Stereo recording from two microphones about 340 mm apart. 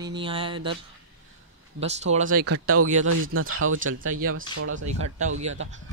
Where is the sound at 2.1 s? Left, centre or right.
Right.